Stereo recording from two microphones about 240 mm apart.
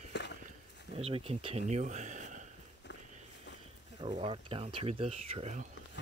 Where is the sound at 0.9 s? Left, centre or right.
Right.